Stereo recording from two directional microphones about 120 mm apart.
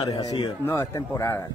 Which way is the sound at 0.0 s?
30° left (ahead or behind).